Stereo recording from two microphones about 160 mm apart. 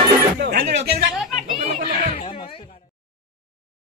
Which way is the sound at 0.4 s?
85° right.